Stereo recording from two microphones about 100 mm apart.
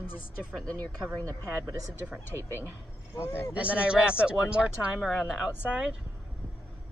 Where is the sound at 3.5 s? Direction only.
15° right (ahead or behind).